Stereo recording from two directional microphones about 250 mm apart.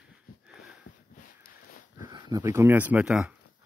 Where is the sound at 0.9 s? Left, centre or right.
Left.